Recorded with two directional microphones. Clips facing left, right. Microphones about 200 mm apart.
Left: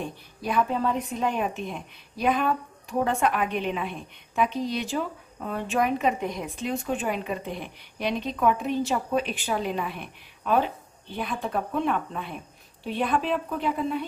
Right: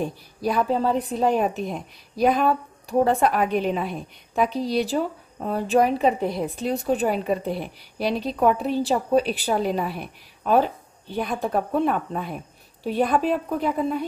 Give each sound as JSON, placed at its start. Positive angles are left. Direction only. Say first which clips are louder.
{"t": 0.0, "sound": "a woman's voice", "louder": "right 7 dB", "side_deg": -40}